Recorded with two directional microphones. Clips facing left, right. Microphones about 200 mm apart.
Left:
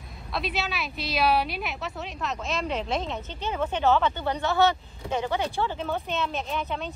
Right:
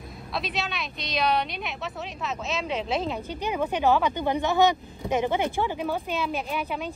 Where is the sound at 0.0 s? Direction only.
Centre (ahead or behind).